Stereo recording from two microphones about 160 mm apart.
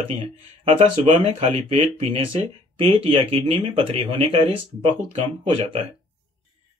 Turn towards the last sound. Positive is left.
turn(degrees=-35)  # may be behind; listen again after turning